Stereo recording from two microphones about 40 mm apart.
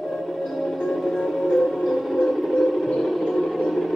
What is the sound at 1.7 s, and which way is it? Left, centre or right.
Music, centre.